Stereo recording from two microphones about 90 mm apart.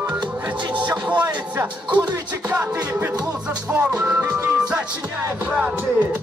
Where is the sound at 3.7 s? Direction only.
15° right (ahead or behind).